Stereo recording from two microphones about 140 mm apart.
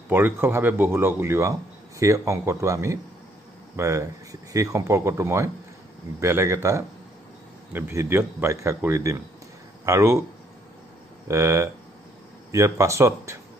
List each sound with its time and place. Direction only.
0.1 s speech: 15° right (ahead or behind)
11.2 s speech: 20° right (ahead or behind)